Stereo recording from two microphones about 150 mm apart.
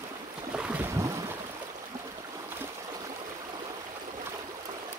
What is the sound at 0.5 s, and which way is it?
Boat, 10° right (ahead or behind).